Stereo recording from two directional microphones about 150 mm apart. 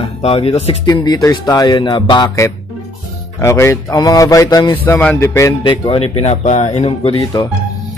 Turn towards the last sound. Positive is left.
turn(degrees=35)  # may be behind; listen again after turning